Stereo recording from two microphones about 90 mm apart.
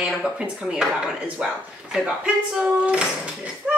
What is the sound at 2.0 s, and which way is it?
Speech, 10° right (ahead or behind).